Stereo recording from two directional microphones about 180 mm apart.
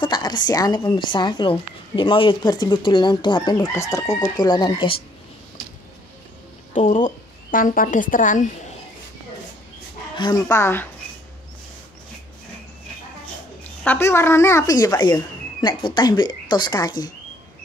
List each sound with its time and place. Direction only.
0.0 s a woman's voice: 25° left (ahead or behind)
6.7 s a woman's voice: 45° left (ahead or behind)
10.1 s speech: 20° left (ahead or behind)
13.8 s a woman's voice: 15° left (ahead or behind)